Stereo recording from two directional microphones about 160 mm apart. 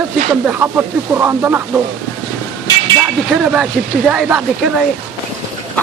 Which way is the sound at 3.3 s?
5° right (ahead or behind).